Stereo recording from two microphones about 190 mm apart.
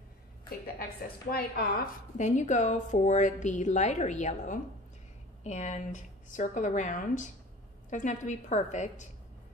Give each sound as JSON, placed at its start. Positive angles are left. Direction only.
{"t": 0.5, "sound": "speech", "side_deg": 55}
{"t": 2.1, "sound": "a woman's voice", "side_deg": 40}